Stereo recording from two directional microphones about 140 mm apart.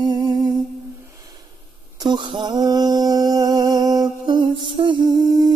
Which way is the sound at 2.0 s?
30° right (ahead or behind).